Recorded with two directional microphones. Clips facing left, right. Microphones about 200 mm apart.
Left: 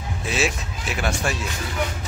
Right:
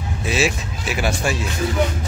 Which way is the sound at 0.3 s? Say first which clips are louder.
Right 4 dB; 5° right (ahead or behind).